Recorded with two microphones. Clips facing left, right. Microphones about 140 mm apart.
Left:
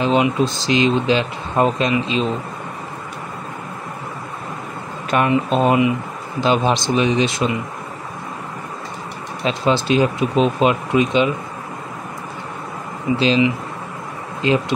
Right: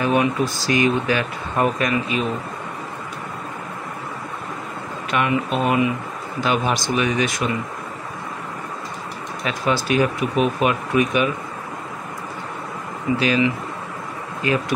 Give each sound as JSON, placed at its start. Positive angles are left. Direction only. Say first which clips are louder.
{"t": 0.0, "sound": "speech", "louder": "left 2 dB", "side_deg": 20}
{"t": 5.1, "sound": "speech", "louder": "left 4 dB", "side_deg": 35}
{"t": 9.4, "sound": "speech", "louder": "left 4 dB", "side_deg": 25}
{"t": 13.2, "sound": "speech", "louder": "left 4 dB", "side_deg": 25}